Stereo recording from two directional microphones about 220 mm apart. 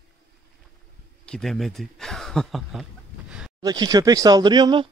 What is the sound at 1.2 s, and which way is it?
Speech, 5° left (ahead or behind).